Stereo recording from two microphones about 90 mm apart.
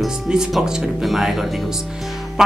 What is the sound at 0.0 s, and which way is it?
Speech, 5° right (ahead or behind).